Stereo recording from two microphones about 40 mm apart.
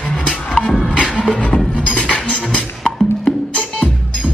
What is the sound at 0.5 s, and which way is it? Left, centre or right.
Music, left.